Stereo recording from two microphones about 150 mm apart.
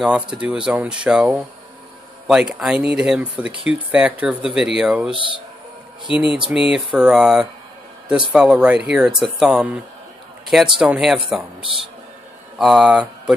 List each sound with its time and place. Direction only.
0.0 s speech: 5° right (ahead or behind)
5.1 s speech: 35° right (ahead or behind)
6.1 s speech: 5° right (ahead or behind)
12.5 s speech: 5° right (ahead or behind)